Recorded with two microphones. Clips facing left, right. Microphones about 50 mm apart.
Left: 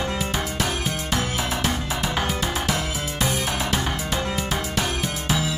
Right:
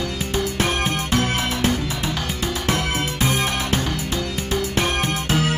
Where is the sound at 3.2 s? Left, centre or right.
Right.